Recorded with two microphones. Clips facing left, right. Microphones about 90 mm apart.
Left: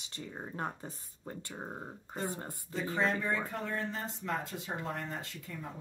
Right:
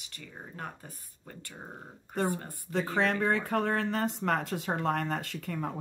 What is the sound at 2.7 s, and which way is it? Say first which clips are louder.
Speech: right 4 dB; 70° right (ahead or behind).